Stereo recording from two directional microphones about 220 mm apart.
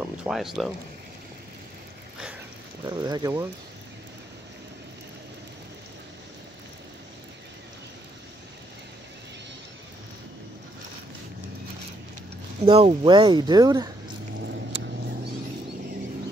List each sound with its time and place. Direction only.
0.0 s speech: 5° right (ahead or behind)
2.8 s speech: 15° right (ahead or behind)
12.6 s speech: 25° right (ahead or behind)